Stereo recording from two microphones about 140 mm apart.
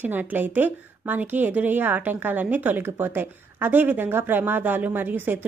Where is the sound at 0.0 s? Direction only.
15° right (ahead or behind).